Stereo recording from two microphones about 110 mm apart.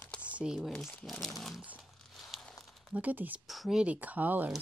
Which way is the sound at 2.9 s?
15° right (ahead or behind).